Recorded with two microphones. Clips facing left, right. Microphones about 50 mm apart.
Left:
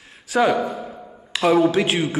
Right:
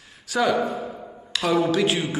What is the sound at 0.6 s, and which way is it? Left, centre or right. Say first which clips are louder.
Speech: even; centre.